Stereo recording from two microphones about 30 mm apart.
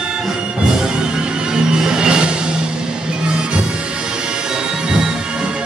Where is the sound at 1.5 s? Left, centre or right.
Right.